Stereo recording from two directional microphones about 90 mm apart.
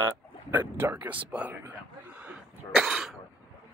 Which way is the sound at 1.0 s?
15° right (ahead or behind).